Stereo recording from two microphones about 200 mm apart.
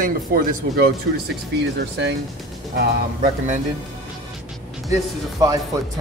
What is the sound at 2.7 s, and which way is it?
Speech, 45° right (ahead or behind).